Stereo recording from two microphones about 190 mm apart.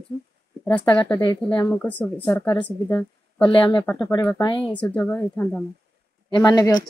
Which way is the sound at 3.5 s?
25° left (ahead or behind).